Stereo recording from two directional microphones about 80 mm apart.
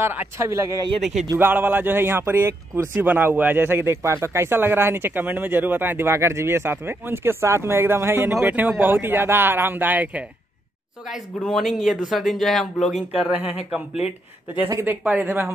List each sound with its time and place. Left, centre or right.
0.0 s speech: right
0.5 s speech: right
1.4 s speech: right
8.5 s speech: right
11.1 s speech: centre
14.9 s speech: right